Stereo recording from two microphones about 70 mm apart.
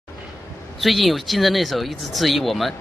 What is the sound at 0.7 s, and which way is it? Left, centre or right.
Speech, centre.